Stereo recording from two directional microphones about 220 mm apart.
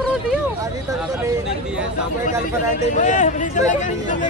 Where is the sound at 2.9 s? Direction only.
35° left (ahead or behind).